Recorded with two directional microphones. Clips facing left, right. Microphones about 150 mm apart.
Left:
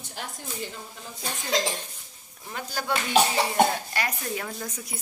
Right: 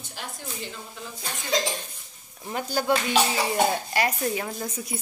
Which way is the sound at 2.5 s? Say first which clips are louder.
Right 5 dB; 25° right (ahead or behind).